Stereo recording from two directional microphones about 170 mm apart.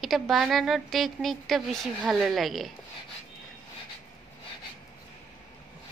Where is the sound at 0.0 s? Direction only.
Centre (ahead or behind).